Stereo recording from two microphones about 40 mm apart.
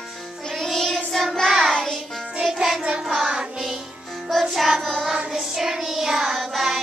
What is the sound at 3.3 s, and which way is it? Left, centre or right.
Music, centre.